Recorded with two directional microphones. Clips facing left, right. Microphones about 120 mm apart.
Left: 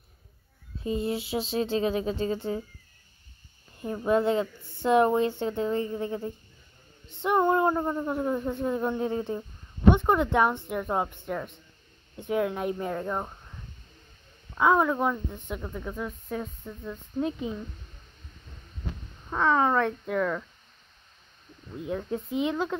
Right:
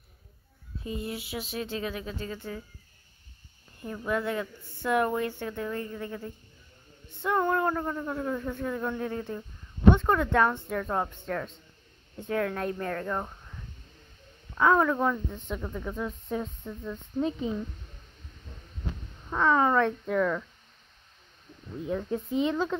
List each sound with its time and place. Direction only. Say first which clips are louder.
0.8 s speech: left 6 dB; 25° left (ahead or behind)
3.8 s speech: left 6 dB; 25° left (ahead or behind)
14.5 s speech: even; 10° left (ahead or behind)
19.3 s speech: even; 5° left (ahead or behind)
21.8 s speech: right 1 dB; 5° left (ahead or behind)